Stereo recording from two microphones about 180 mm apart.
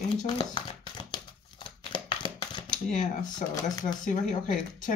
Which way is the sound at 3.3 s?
20° left (ahead or behind).